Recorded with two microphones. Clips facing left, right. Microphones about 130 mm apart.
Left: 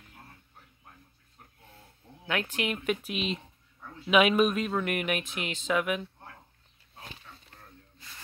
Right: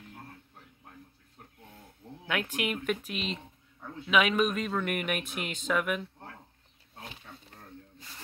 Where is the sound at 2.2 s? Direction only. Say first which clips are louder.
Left 1 dB; 5° right (ahead or behind).